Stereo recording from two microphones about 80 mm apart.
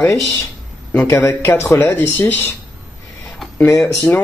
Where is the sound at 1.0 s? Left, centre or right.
Left.